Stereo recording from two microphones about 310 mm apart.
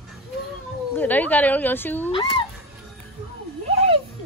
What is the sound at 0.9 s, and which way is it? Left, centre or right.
Speech, centre.